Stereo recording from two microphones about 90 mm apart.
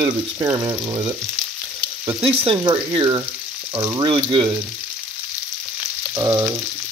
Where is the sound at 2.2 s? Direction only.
90° right.